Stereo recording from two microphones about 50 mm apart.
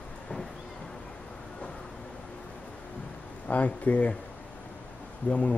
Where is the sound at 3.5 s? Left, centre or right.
Left.